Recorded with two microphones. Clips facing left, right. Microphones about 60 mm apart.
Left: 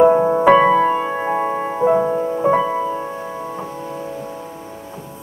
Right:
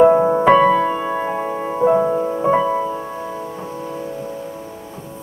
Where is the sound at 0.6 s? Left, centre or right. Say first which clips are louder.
Left 1 dB; centre.